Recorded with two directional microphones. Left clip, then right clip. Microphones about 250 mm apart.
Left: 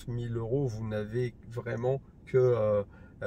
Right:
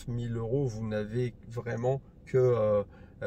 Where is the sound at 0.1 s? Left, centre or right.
Centre.